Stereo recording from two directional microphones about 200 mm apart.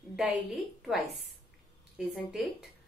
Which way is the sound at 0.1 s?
5° right (ahead or behind).